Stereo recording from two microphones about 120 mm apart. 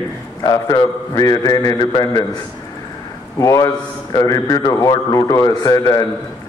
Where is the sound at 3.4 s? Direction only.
25° left (ahead or behind).